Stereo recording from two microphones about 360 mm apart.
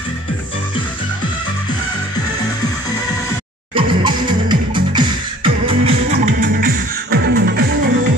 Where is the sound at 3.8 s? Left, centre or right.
Centre.